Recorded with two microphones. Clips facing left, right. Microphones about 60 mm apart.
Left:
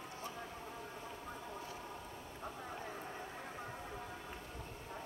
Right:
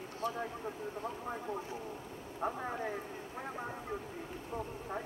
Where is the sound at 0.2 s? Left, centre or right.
Left.